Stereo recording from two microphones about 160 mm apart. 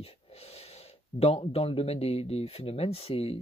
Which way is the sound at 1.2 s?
40° left (ahead or behind).